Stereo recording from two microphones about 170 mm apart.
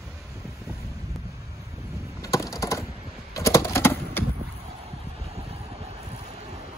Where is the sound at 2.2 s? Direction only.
20° left (ahead or behind).